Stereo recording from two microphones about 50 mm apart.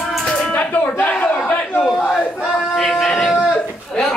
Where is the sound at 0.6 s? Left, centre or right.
Left.